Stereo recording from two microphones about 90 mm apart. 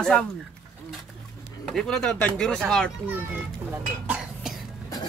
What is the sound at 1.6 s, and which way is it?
Speech, 5° left (ahead or behind).